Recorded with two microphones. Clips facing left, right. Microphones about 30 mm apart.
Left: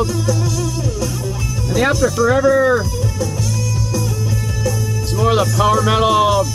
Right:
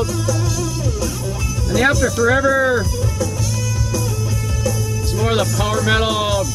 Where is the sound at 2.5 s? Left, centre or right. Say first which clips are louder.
Left 3 dB; centre.